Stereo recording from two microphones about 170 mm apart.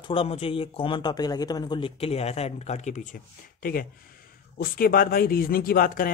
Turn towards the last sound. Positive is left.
turn(degrees=55)  # may be behind; listen again after turning